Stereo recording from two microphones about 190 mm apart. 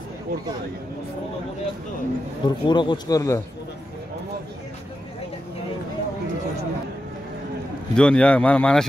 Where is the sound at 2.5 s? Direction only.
25° left (ahead or behind).